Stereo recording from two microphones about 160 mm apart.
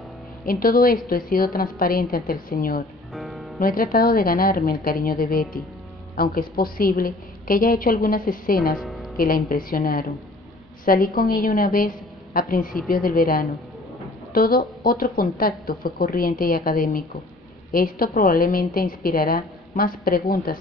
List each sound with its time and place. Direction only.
0.5 s a woman's voice: 65° left (ahead or behind)
3.1 s music: centre (ahead or behind)
3.5 s a woman's voice: 65° left (ahead or behind)
8.7 s music: centre (ahead or behind)
9.1 s a woman's voice: 65° left (ahead or behind)